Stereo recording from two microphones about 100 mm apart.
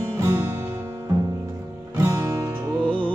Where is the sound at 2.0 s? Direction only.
30° right (ahead or behind).